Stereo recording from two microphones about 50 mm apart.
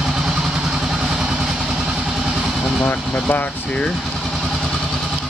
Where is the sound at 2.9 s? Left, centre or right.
Left.